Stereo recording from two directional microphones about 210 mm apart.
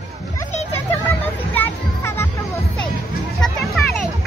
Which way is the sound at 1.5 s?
10° left (ahead or behind).